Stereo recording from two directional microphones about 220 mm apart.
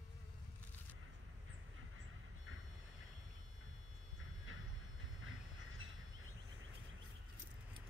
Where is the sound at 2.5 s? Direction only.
70° right (ahead or behind).